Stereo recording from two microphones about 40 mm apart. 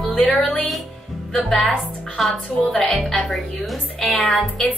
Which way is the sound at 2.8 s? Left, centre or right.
Left.